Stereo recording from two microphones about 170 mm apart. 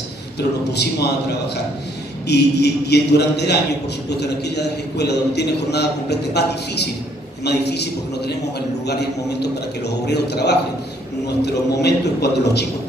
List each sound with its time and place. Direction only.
0.7 s a man's voice: 75° left (ahead or behind)